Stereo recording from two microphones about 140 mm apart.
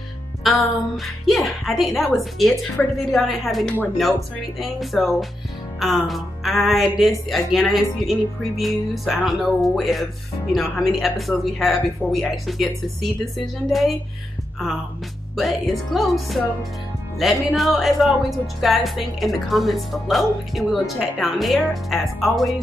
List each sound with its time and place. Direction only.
0.4 s speech: centre (ahead or behind)
15.3 s speech: centre (ahead or behind)